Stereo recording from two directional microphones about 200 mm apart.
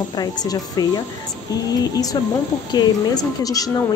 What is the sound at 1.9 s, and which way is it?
A woman's voice, 20° left (ahead or behind).